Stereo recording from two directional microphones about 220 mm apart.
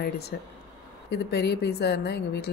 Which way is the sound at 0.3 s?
45° left (ahead or behind).